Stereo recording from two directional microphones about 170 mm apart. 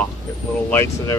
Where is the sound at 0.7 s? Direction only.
15° left (ahead or behind).